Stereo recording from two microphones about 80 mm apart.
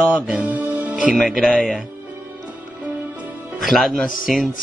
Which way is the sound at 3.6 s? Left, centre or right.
Centre.